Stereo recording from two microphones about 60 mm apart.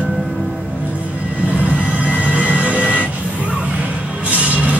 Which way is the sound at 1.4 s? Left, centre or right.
Right.